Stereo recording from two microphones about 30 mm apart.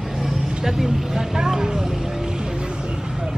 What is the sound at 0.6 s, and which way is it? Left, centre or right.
Vehicle, centre.